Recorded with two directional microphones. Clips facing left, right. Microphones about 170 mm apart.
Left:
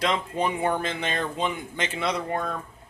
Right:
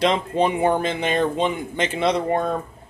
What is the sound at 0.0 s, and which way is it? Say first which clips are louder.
Speech: right 6 dB; 25° right (ahead or behind).